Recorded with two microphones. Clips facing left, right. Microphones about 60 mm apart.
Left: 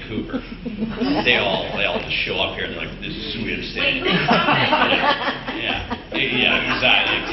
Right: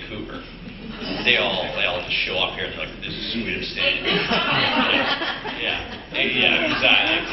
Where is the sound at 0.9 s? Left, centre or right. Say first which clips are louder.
Left 9 dB; left.